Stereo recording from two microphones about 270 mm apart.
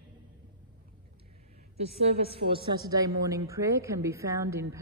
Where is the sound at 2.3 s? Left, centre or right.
Centre.